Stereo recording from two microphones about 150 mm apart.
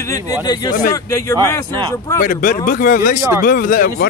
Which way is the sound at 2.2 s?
65° left (ahead or behind).